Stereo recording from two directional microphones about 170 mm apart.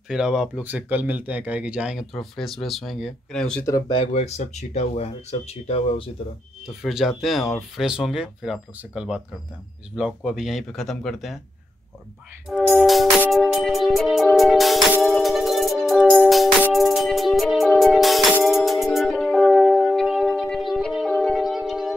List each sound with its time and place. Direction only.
0.1 s speech: 5° right (ahead or behind)
3.9 s speech: 40° left (ahead or behind)
6.7 s speech: centre (ahead or behind)
12.6 s music: centre (ahead or behind)